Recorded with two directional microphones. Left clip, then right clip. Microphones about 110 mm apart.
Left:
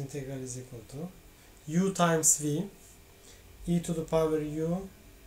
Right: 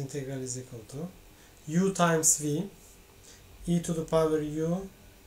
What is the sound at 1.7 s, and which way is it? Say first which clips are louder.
Music: right 1 dB; 10° right (ahead or behind).